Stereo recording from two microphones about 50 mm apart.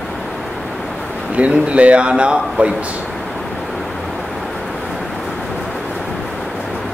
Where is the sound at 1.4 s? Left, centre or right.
Right.